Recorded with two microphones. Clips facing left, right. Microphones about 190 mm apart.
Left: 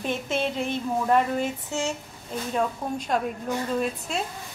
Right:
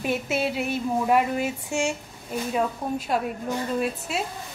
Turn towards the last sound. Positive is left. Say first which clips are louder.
# right 1 dB
turn(degrees=-5)  # may be behind; listen again after turning